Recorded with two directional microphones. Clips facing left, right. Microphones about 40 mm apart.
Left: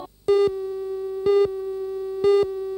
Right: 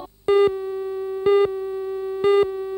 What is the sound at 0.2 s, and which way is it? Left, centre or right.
Busy signal, right.